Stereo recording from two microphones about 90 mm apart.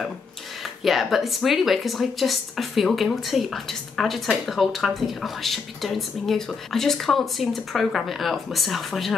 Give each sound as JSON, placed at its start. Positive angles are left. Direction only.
{"t": 0.8, "sound": "speech", "side_deg": 0}